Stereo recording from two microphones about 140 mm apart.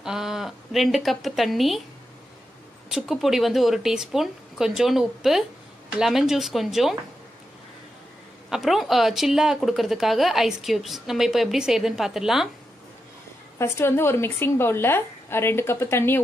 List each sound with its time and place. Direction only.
0.0 s speech: 5° right (ahead or behind)
2.9 s speech: 5° right (ahead or behind)
8.5 s speech: centre (ahead or behind)
13.6 s a woman's voice: 20° left (ahead or behind)